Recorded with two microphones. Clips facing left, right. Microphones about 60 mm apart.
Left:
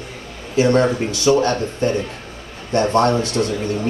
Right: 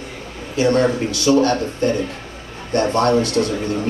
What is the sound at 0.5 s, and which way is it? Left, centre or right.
A man's voice, left.